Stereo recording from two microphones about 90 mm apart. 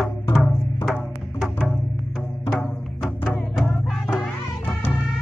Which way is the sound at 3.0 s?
20° left (ahead or behind).